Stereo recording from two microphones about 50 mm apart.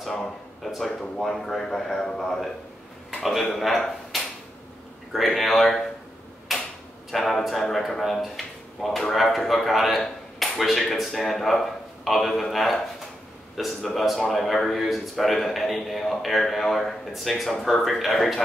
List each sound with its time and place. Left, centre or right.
0.0 s speech: centre
6.5 s a sound: centre
7.1 s speech: centre